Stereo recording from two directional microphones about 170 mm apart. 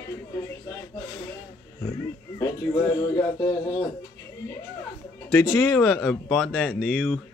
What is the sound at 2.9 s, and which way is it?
Speech, 15° left (ahead or behind).